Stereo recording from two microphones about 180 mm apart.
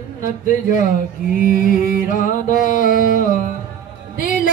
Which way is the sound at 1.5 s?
45° left (ahead or behind).